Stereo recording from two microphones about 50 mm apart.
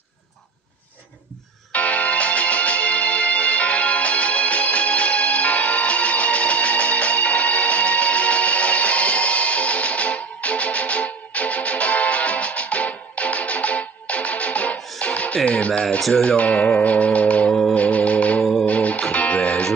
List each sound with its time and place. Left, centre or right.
1.7 s music: left
17.5 s music: centre
17.7 s music: left
18.4 s music: centre
18.7 s music: left